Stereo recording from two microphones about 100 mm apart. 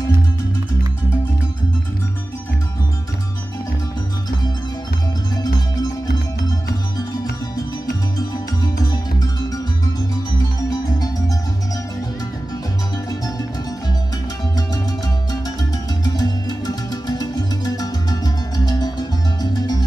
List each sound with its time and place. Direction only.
10.4 s music: 40° left (ahead or behind)
16.0 s music: 45° left (ahead or behind)